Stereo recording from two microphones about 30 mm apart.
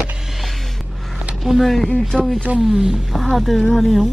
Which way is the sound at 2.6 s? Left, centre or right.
Centre.